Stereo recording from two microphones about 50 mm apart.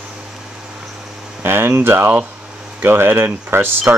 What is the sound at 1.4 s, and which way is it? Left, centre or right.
Speech, right.